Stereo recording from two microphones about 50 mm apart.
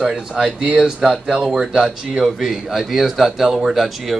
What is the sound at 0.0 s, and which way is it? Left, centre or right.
A man's voice, centre.